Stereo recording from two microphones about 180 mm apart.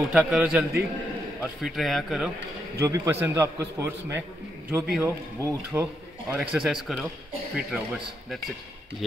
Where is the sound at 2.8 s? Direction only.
15° right (ahead or behind).